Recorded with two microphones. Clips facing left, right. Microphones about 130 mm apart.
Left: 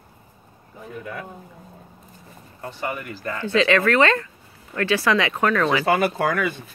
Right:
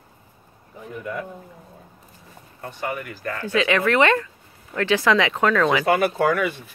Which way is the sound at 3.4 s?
15° right (ahead or behind).